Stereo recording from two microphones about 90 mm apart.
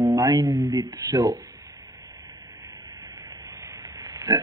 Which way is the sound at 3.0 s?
35° right (ahead or behind).